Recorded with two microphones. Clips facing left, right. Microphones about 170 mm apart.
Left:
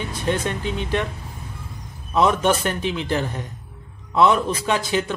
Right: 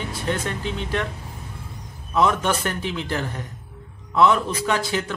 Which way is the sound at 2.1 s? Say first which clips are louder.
Left 2 dB; 20° left (ahead or behind).